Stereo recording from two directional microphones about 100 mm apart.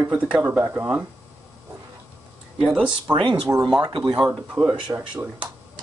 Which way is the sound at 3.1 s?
55° right (ahead or behind).